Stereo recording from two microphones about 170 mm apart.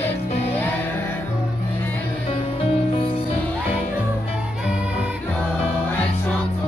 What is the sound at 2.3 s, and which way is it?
Music, 35° left (ahead or behind).